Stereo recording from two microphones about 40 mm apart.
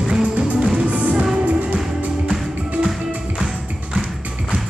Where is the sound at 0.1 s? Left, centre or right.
Right.